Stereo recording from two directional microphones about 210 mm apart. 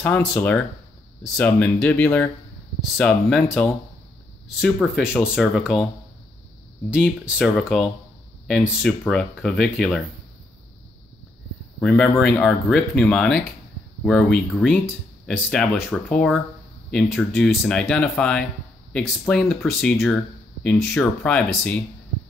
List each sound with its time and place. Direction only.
0.0 s speech: 10° left (ahead or behind)
6.9 s speech: 5° right (ahead or behind)
11.8 s speech: 5° left (ahead or behind)